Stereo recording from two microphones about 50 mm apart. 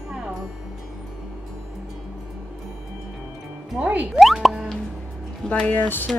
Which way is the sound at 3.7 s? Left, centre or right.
Right.